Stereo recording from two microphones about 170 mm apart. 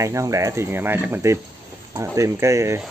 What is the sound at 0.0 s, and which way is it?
Speech, 20° right (ahead or behind).